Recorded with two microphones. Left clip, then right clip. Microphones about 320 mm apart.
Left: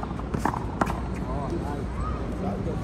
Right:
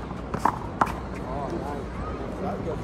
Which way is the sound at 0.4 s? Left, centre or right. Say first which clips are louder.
Right 4 dB; centre.